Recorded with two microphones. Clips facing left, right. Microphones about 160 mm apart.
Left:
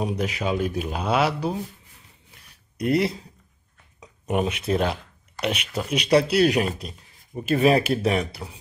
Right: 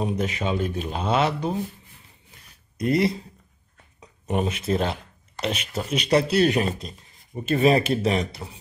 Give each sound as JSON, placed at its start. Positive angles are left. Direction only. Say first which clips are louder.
{"t": 0.0, "sound": "speech", "louder": "even", "side_deg": 5}
{"t": 2.8, "sound": "speech", "louder": "even", "side_deg": 0}
{"t": 4.0, "sound": "a sound", "louder": "left 1 dB", "side_deg": 5}
{"t": 4.6, "sound": "speech", "louder": "left 1 dB", "side_deg": 0}